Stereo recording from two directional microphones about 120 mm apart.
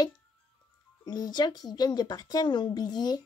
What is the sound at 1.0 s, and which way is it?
Speech, 35° left (ahead or behind).